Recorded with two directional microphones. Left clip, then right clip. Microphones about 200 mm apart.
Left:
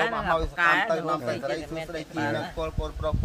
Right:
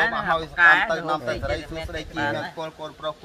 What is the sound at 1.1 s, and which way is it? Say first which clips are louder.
Speech: right 2 dB; 15° left (ahead or behind).